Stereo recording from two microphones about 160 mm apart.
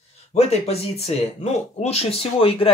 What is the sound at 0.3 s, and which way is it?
Speech, 40° left (ahead or behind).